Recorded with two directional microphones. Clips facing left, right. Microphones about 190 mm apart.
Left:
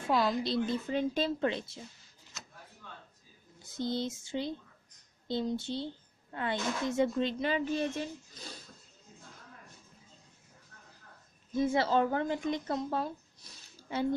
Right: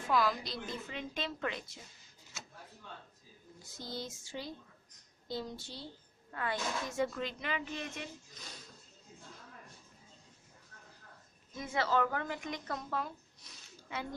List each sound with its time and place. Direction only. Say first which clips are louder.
0.1 s a woman's voice: left 3 dB; 25° left (ahead or behind)
3.7 s a woman's voice: left 10 dB; 25° left (ahead or behind)
11.5 s speech: left 5 dB; 30° left (ahead or behind)